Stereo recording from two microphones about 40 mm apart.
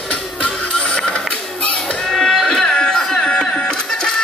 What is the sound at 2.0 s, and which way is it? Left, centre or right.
Music, centre.